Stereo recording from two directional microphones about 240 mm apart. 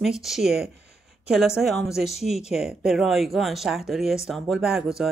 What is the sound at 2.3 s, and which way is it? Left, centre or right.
Speech, centre.